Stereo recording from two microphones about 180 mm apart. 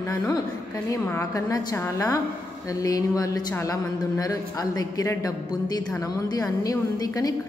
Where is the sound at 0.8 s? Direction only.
15° left (ahead or behind).